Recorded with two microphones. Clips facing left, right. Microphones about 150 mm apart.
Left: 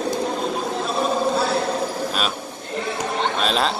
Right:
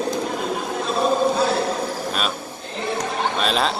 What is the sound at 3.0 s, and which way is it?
Chatter, centre (ahead or behind).